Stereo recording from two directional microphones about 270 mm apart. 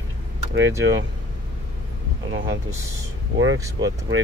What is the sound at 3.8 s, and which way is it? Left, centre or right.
Speech, right.